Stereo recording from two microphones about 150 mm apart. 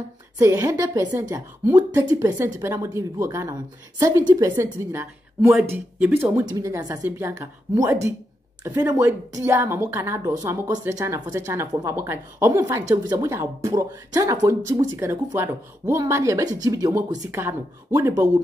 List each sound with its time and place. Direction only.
0.4 s speech: 20° right (ahead or behind)